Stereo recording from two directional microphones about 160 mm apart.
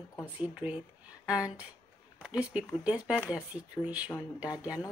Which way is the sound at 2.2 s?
5° right (ahead or behind).